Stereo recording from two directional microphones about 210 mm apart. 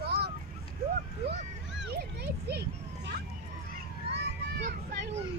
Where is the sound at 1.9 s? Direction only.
50° right (ahead or behind).